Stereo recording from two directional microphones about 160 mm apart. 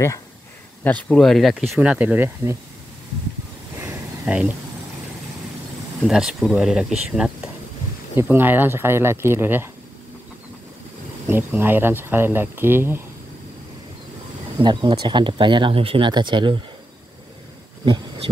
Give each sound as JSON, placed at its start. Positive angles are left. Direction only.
{"t": 0.8, "sound": "speech", "side_deg": 5}
{"t": 3.8, "sound": "a sound", "side_deg": -10}
{"t": 6.0, "sound": "speech", "side_deg": -5}
{"t": 11.2, "sound": "speech", "side_deg": -15}
{"t": 14.6, "sound": "speech", "side_deg": -30}
{"t": 17.8, "sound": "a sound", "side_deg": -30}